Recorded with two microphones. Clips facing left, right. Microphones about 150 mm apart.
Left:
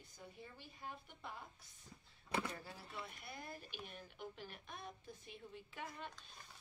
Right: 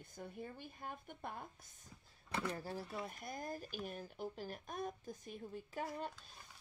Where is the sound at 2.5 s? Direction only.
40° right (ahead or behind).